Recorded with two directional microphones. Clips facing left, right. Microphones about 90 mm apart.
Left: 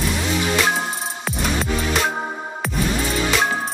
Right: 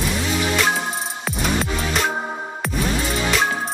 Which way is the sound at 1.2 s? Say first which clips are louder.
Even; centre (ahead or behind).